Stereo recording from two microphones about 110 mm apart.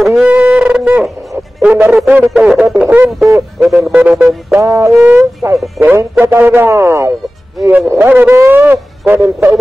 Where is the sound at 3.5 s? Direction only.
Centre (ahead or behind).